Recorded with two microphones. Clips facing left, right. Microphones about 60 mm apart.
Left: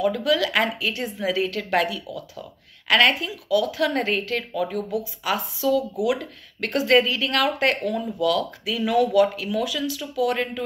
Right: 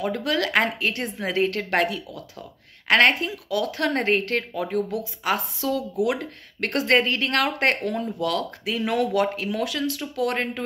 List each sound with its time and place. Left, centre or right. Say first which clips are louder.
0.0 s speech: left 3 dB; right
10.3 s speech: left 1 dB; right